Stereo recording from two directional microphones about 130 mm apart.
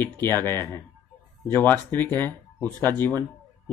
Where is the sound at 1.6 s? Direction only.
15° left (ahead or behind).